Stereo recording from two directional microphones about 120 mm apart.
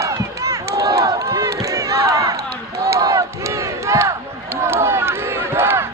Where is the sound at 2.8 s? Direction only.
25° right (ahead or behind).